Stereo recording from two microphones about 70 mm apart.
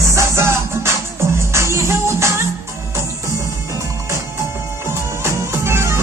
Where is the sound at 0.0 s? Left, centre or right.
Right.